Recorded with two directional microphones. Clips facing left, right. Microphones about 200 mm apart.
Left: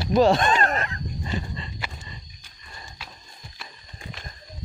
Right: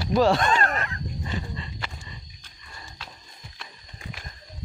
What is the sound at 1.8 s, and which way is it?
Pig, 10° left (ahead or behind).